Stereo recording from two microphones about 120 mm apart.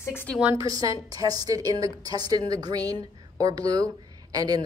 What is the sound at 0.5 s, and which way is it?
A woman's voice, 30° right (ahead or behind).